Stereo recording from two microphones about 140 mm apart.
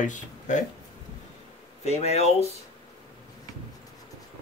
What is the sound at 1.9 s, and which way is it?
Speech, 50° left (ahead or behind).